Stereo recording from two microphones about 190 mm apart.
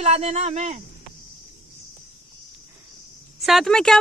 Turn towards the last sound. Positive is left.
turn(degrees=5)  # may be behind; listen again after turning